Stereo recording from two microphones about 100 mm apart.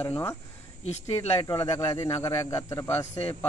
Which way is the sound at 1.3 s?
40° left (ahead or behind).